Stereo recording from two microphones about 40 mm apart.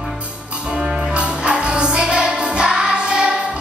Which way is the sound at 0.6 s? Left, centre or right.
Centre.